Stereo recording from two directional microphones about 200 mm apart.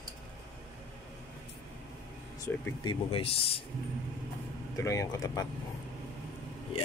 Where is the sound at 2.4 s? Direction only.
25° left (ahead or behind).